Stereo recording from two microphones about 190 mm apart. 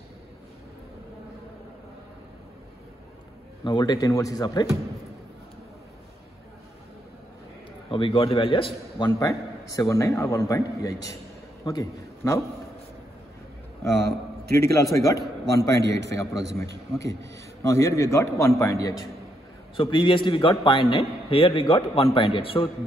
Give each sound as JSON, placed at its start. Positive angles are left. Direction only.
{"t": 3.6, "sound": "a man's voice", "side_deg": 25}
{"t": 7.9, "sound": "a man's voice", "side_deg": 25}
{"t": 13.9, "sound": "a man's voice", "side_deg": -55}
{"t": 16.1, "sound": "a man's voice", "side_deg": 15}
{"t": 17.6, "sound": "a man's voice", "side_deg": 15}